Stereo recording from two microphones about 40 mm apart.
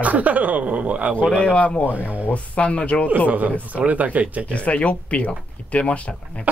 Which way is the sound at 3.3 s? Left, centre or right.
Right.